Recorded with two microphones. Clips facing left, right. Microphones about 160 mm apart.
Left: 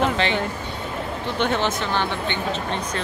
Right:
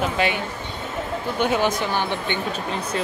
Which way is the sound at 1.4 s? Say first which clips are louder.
Right 2 dB; 10° right (ahead or behind).